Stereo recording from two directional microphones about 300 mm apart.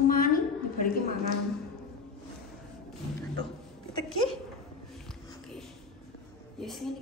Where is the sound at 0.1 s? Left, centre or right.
Left.